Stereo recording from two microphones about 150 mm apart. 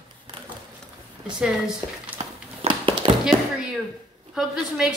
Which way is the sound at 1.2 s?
5° right (ahead or behind).